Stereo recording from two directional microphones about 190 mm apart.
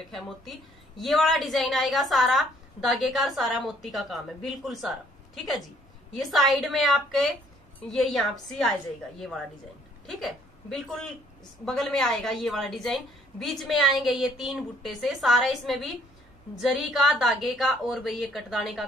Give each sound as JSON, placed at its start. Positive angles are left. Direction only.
{"t": 0.1, "sound": "a woman's voice", "side_deg": 0}
{"t": 10.0, "sound": "a woman's voice", "side_deg": 0}